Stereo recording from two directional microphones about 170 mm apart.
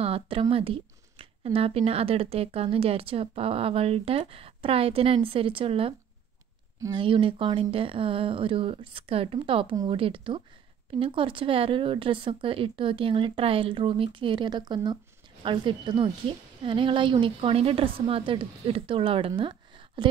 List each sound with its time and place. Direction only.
0.0 s speech: 35° right (ahead or behind)